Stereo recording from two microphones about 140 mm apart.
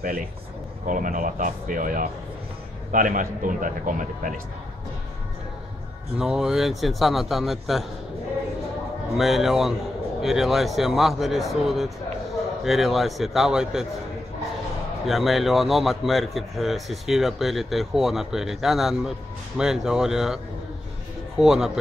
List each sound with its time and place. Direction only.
0.8 s a man's voice: 70° right (ahead or behind)
6.1 s speech: 5° right (ahead or behind)
9.1 s speech: centre (ahead or behind)
15.0 s speech: centre (ahead or behind)
21.4 s speech: 5° right (ahead or behind)